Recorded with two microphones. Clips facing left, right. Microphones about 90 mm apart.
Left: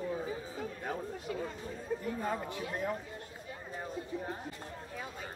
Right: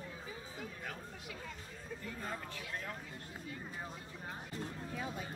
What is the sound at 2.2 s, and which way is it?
Speech, 25° left (ahead or behind).